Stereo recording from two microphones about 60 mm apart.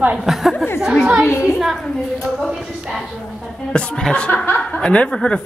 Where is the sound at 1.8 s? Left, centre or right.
Centre.